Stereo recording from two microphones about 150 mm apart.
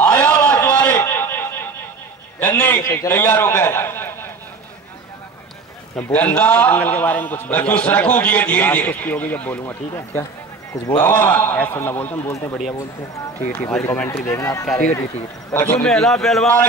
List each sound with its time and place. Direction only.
0.0 s a sound: 10° left (ahead or behind)
2.9 s a man's voice: 15° left (ahead or behind)
5.9 s a man's voice: 15° left (ahead or behind)
14.2 s a man's voice: 20° left (ahead or behind)